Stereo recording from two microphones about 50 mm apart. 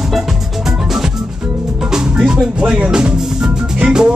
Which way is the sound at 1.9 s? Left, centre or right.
Centre.